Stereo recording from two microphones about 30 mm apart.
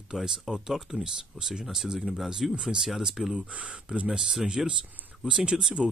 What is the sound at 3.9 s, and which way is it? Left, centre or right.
Speech, right.